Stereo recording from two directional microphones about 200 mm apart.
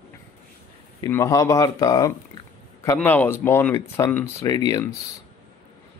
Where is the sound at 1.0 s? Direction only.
15° left (ahead or behind).